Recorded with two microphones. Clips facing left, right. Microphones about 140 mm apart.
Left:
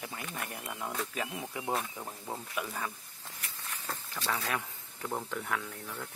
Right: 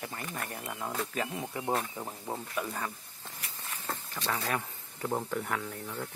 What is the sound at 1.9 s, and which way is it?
Speech, 10° right (ahead or behind).